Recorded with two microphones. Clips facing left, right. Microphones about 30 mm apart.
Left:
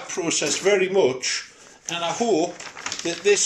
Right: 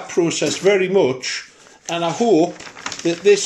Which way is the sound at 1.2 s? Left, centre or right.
Right.